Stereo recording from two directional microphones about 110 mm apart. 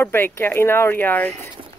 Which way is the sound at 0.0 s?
20° left (ahead or behind).